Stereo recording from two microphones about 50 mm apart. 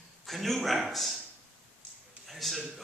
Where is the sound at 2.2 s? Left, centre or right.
Centre.